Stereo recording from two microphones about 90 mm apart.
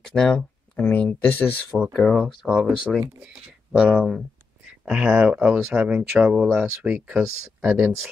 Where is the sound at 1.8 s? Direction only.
5° left (ahead or behind).